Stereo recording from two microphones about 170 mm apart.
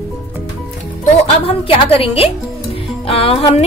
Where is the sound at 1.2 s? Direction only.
35° left (ahead or behind).